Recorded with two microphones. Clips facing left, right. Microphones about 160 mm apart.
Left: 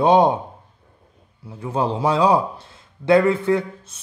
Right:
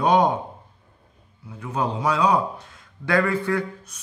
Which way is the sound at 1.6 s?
30° left (ahead or behind).